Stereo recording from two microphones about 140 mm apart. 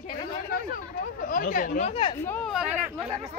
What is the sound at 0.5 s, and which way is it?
Chatter, 90° left.